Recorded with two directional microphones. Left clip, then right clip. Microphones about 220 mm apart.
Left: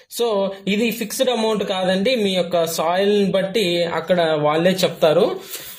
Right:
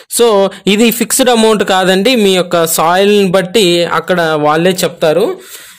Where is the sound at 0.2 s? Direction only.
50° right (ahead or behind).